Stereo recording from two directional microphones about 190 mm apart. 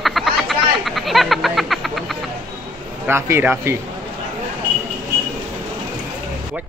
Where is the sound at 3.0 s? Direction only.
15° right (ahead or behind).